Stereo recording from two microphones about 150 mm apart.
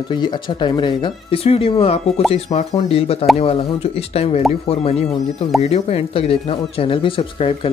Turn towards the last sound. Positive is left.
turn(degrees=35)  # may be behind; listen again after turning